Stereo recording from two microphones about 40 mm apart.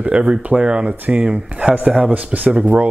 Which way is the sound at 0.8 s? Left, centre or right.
Right.